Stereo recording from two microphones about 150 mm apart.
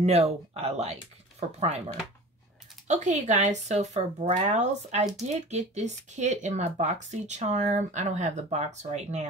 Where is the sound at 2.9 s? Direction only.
55° right (ahead or behind).